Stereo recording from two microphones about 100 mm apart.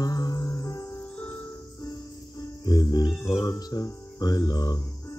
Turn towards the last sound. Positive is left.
turn(degrees=40)  # may be behind; listen again after turning